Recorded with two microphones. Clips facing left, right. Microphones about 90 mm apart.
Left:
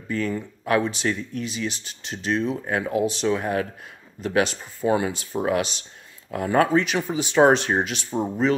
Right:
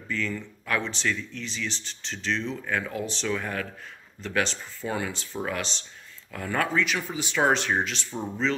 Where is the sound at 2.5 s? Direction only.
40° left (ahead or behind).